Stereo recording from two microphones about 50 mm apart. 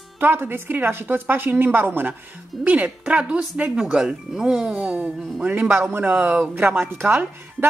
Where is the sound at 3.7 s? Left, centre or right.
Centre.